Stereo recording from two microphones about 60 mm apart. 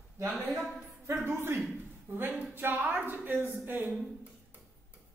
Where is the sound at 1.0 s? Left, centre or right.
Right.